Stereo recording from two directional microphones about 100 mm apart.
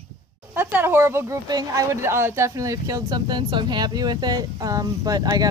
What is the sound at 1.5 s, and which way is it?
Speech, 40° right (ahead or behind).